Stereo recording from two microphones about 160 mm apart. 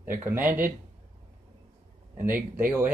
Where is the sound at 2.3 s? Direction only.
10° right (ahead or behind).